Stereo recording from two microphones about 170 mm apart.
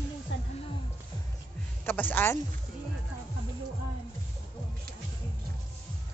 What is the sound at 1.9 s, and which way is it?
Speech, 10° left (ahead or behind).